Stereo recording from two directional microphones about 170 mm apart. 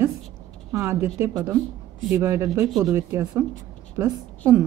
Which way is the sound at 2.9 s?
15° right (ahead or behind).